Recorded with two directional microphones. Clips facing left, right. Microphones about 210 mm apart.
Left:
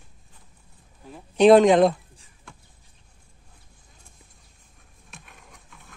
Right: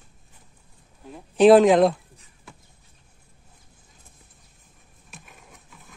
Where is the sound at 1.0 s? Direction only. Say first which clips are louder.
Right 1 dB; centre (ahead or behind).